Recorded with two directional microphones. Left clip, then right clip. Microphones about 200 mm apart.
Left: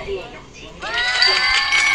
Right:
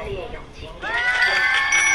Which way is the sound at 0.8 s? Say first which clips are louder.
Left 2 dB; centre (ahead or behind).